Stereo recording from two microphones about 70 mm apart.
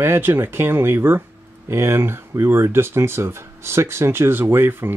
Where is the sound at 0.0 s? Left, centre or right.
Right.